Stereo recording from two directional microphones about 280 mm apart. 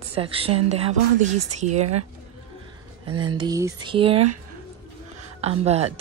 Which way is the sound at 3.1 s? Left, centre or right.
Centre.